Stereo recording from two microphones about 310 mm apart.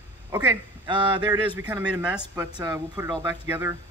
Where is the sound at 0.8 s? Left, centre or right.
Centre.